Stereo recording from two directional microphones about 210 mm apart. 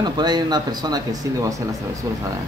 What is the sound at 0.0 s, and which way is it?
Speech, 20° right (ahead or behind).